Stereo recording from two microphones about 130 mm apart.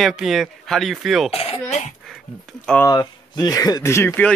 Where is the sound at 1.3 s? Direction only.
50° left (ahead or behind).